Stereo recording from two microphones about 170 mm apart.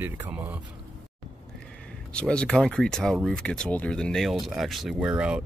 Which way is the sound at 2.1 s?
5° left (ahead or behind).